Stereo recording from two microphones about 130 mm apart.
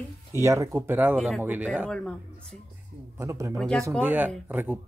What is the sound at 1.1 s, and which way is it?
Speech, centre (ahead or behind).